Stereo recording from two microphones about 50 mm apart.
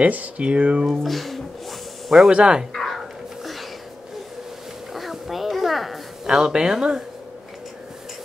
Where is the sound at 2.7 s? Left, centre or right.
Centre.